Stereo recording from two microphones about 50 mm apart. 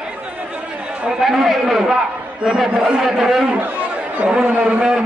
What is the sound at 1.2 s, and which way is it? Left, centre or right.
A man's voice, centre.